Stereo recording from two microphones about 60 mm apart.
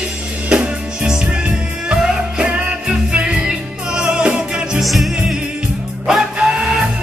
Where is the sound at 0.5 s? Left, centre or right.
Centre.